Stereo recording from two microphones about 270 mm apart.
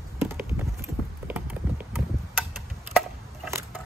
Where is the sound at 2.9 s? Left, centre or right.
Centre.